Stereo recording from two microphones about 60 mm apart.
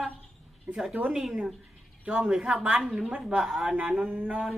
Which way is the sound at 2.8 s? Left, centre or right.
Centre.